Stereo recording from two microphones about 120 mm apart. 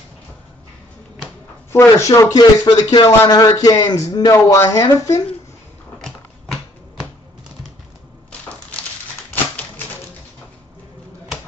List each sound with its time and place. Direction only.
1.7 s speech: 25° left (ahead or behind)
2.3 s speech: 40° left (ahead or behind)
5.9 s a sound: centre (ahead or behind)